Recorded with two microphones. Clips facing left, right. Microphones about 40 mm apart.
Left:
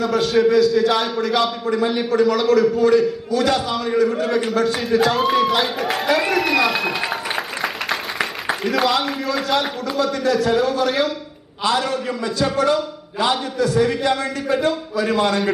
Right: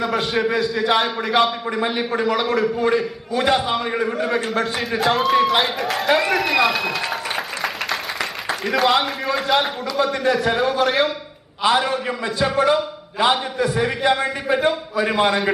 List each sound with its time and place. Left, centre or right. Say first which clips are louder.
0.0 s a man's voice: left 4 dB; right
5.8 s speech: even; centre
7.1 s applause: left 1 dB; centre
8.8 s a man's voice: right 4 dB; centre
11.6 s a man's voice: right 2 dB; right